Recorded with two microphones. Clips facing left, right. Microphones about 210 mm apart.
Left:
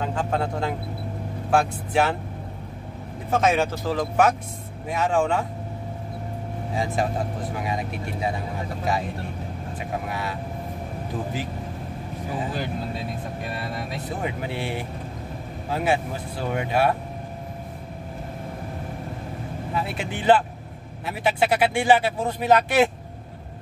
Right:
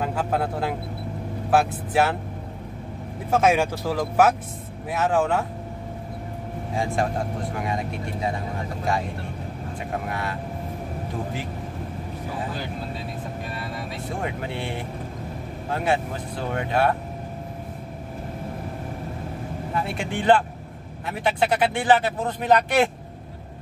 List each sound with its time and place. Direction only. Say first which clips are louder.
0.0 s speech: right 1 dB; 5° right (ahead or behind)
3.3 s speech: right 1 dB; 10° right (ahead or behind)
6.7 s speech: right 1 dB; centre (ahead or behind)
10.0 s speech: right 1 dB; 5° left (ahead or behind)
14.2 s speech: left 1 dB; 5° left (ahead or behind)
19.7 s speech: right 1 dB; 5° left (ahead or behind)